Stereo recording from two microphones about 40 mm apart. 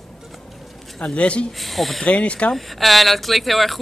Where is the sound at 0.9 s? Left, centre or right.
Left.